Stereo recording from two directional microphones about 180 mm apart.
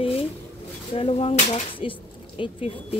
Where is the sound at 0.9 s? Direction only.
30° left (ahead or behind).